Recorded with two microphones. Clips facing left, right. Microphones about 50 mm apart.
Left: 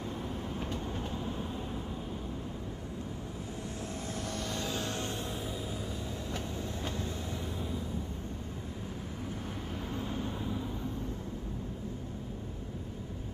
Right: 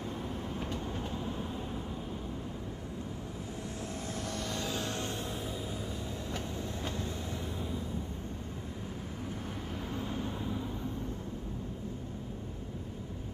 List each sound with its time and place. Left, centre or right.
4.3 s vehicle: left
4.7 s music: centre